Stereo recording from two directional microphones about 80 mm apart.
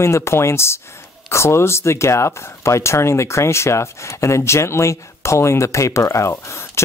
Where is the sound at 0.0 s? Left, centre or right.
Left.